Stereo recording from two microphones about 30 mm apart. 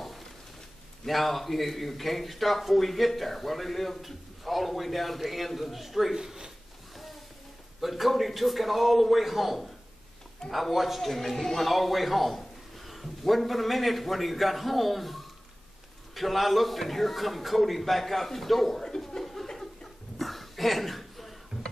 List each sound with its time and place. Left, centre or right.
1.0 s a man's voice: centre
6.1 s a man's voice: right
7.8 s a man's voice: centre
11.1 s a man's voice: centre
19.4 s chuckle: centre
20.2 s a sound: centre